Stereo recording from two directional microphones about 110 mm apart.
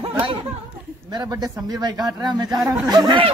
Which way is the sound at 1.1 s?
35° right (ahead or behind).